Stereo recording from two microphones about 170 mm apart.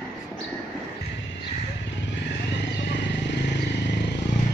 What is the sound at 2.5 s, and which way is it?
Vehicle, 90° left.